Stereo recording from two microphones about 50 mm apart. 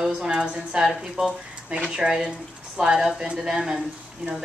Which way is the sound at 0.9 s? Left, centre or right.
Centre.